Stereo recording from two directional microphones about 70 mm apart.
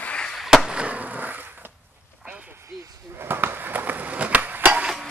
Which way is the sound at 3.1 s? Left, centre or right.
Right.